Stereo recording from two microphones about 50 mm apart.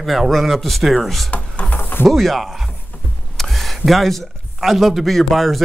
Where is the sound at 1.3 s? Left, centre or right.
Left.